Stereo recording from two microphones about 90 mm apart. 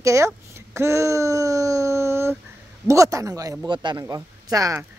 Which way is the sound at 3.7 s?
55° right (ahead or behind).